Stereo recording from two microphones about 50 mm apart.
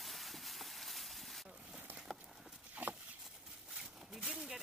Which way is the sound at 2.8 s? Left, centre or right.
Right.